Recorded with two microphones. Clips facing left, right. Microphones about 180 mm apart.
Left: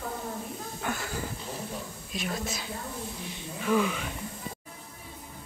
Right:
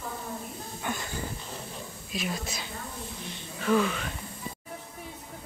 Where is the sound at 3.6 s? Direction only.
10° left (ahead or behind).